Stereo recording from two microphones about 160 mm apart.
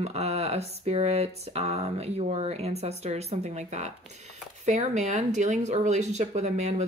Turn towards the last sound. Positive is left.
turn(degrees=-45)  # may be behind; listen again after turning